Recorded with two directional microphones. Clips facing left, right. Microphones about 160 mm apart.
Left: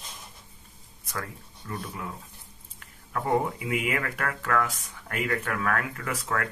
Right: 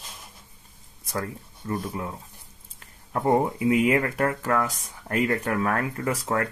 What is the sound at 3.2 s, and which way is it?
Speech, 35° right (ahead or behind).